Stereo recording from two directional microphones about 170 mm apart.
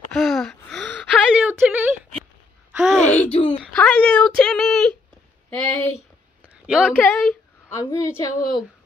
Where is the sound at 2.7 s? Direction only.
Centre (ahead or behind).